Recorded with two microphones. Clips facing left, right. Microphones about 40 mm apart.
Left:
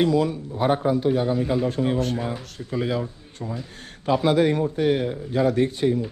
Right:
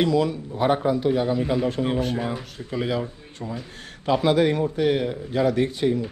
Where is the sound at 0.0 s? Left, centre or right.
Right.